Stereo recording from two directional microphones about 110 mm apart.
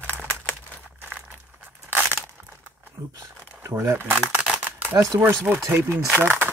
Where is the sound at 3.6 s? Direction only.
25° right (ahead or behind).